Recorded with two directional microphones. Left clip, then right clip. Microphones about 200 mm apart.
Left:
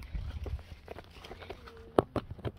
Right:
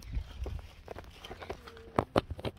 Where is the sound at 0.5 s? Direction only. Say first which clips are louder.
Right 1 dB; 35° right (ahead or behind).